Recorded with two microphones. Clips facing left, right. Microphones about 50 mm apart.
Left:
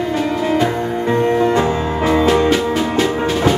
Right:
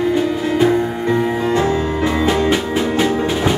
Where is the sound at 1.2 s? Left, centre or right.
Centre.